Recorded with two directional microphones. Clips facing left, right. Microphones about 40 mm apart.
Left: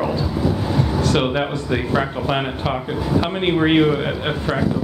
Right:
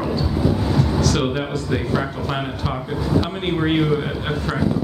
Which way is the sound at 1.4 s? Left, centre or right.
Left.